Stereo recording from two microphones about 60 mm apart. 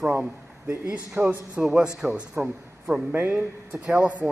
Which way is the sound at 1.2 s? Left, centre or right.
Right.